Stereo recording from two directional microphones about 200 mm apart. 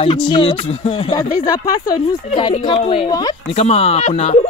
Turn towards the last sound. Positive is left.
turn(degrees=35)  # may be behind; listen again after turning